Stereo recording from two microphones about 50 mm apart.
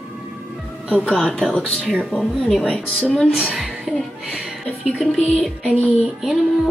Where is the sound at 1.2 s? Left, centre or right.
Centre.